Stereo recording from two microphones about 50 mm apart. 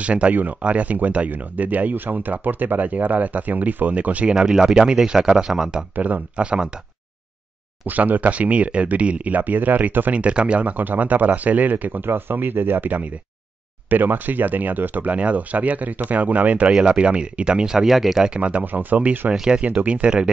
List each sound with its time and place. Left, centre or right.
0.0 s speech: right
4.3 s speech: centre
5.9 s speech: right
6.3 s speech: right
7.8 s speech: right; by 18.2 s centre
18.2 s speech: right
19.3 s speech: centre
19.8 s speech: right